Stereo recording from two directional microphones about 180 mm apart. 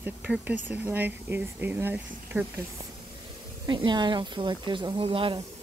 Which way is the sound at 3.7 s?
25° right (ahead or behind).